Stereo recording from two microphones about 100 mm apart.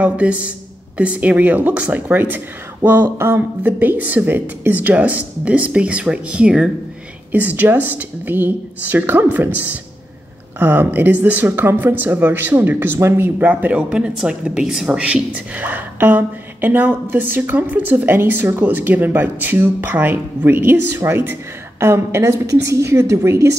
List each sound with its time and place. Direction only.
0.0 s speech: 15° right (ahead or behind)
10.6 s speech: 20° right (ahead or behind)